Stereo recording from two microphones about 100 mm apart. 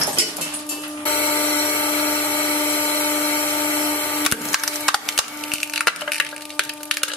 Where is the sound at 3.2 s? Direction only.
20° left (ahead or behind).